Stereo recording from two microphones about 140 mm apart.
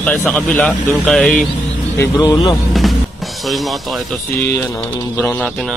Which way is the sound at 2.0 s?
20° left (ahead or behind).